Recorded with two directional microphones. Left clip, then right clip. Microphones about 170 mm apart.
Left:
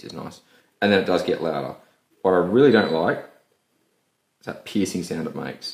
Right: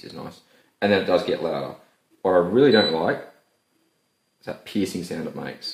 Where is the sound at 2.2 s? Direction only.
35° left (ahead or behind).